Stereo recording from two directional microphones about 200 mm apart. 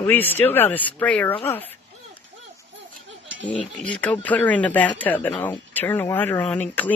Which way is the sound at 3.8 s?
5° left (ahead or behind).